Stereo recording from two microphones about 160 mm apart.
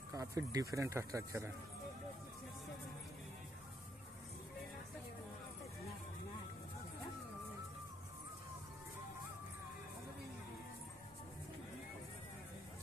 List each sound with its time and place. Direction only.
0.1 s speech: 20° right (ahead or behind)